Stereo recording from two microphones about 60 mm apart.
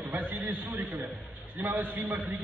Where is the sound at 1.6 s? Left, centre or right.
Right.